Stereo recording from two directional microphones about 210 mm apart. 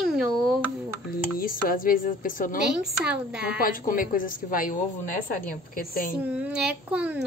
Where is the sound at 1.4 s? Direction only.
40° left (ahead or behind).